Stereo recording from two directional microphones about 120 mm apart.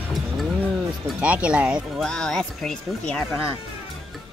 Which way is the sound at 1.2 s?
10° right (ahead or behind).